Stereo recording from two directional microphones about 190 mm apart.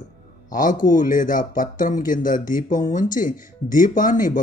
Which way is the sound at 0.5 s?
45° left (ahead or behind).